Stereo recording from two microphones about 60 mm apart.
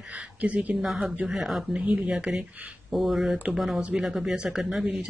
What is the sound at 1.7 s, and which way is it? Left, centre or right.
Speech, centre.